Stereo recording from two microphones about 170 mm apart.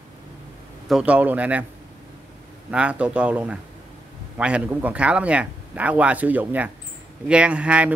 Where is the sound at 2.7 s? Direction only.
5° right (ahead or behind).